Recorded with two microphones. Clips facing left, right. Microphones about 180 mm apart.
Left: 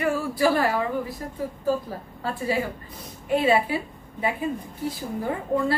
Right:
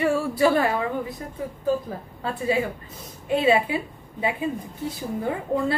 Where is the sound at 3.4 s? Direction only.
20° right (ahead or behind).